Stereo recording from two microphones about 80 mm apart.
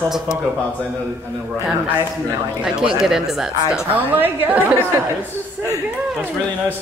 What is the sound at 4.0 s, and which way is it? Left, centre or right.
Speech, right.